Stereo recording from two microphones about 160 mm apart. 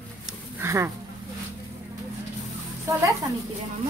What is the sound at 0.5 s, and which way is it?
Speech, 15° right (ahead or behind).